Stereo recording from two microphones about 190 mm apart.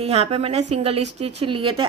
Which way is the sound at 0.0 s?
30° right (ahead or behind).